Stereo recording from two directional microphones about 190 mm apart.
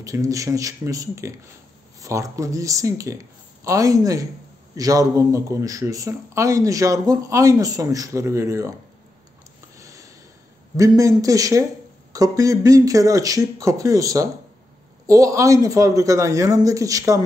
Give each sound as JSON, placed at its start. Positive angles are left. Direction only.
{"t": 0.0, "sound": "speech", "side_deg": -15}
{"t": 9.8, "sound": "a sound", "side_deg": -15}
{"t": 10.8, "sound": "speech", "side_deg": -15}